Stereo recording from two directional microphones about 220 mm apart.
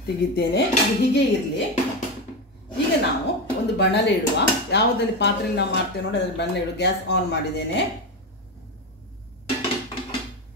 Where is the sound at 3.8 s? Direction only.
50° left (ahead or behind).